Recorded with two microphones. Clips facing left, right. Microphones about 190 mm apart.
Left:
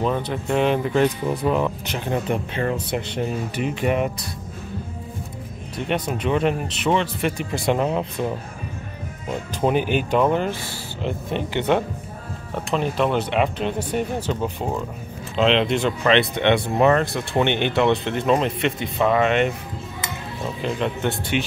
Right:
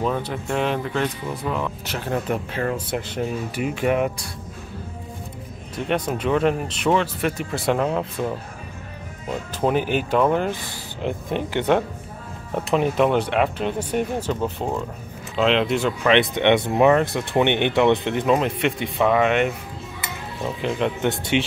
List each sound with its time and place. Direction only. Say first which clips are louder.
0.0 s speech: left 1 dB; centre (ahead or behind)
0.9 s speech: left 5 dB; 20° left (ahead or behind)
1.9 s speech: left 1 dB; 5° right (ahead or behind)
5.9 s speech: right 1 dB; 10° left (ahead or behind)
7.7 s speech: even; 10° left (ahead or behind)
9.8 s speech: left 1 dB; 40° right (ahead or behind)
11.0 s speech: right 1 dB; 10° right (ahead or behind)
12.7 s speech: right 2 dB; 10° right (ahead or behind)
14.4 s speech: even; 5° left (ahead or behind)
20.6 s speech: right 1 dB; 15° right (ahead or behind)